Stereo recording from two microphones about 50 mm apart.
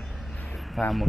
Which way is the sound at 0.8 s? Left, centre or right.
Centre.